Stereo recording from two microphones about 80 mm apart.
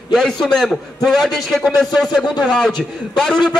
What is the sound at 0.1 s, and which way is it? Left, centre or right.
A man's voice, centre.